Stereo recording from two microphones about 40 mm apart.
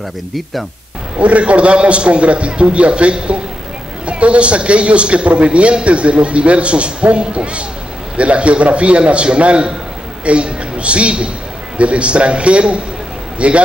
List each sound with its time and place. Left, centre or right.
1.1 s a man's voice: right